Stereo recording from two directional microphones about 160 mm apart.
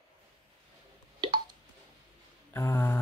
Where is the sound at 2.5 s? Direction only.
15° left (ahead or behind).